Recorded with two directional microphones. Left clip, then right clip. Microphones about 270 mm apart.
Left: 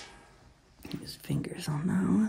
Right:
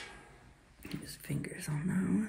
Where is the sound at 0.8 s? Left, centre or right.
Left.